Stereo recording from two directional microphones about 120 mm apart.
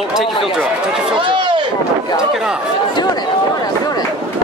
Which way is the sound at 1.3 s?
45° right (ahead or behind).